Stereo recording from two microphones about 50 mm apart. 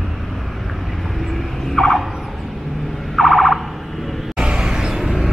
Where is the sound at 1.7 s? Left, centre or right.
Centre.